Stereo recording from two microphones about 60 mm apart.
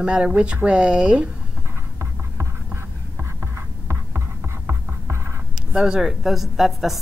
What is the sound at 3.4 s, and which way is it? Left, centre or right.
Throbbing, right.